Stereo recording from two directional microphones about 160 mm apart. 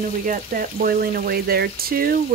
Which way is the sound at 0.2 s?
55° right (ahead or behind).